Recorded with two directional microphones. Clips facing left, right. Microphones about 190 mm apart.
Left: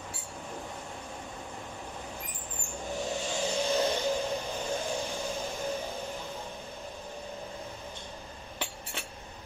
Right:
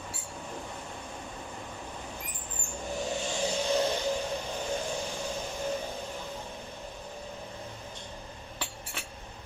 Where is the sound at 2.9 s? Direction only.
Centre (ahead or behind).